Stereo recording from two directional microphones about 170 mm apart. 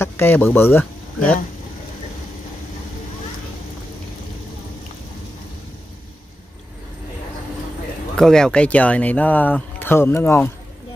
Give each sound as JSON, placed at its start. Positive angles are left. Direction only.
{"t": 0.0, "sound": "speech", "side_deg": 15}
{"t": 8.2, "sound": "speech", "side_deg": 5}